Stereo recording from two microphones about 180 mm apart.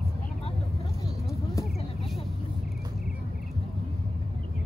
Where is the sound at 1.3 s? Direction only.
15° left (ahead or behind).